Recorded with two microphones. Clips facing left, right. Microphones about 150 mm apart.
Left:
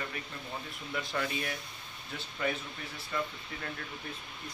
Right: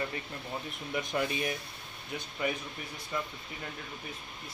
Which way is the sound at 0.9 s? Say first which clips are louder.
Right 3 dB; 20° right (ahead or behind).